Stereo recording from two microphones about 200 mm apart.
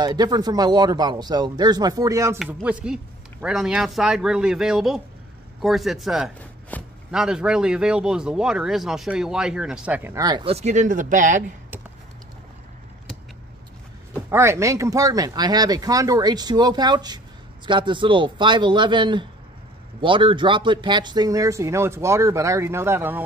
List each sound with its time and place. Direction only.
0.0 s speech: 20° right (ahead or behind)
2.3 s speech: 5° right (ahead or behind); by 11.4 s 40° right (ahead or behind)
14.3 s speech: 15° right (ahead or behind)